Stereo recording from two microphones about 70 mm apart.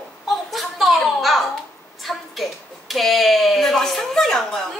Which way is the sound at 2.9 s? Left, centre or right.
Centre.